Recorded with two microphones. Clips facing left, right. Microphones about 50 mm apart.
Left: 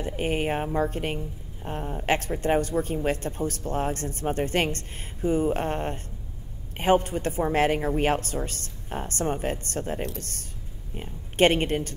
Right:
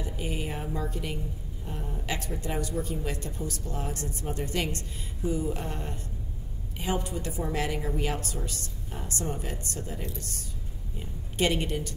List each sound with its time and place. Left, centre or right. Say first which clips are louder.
0.0 s speech: left 7 dB; left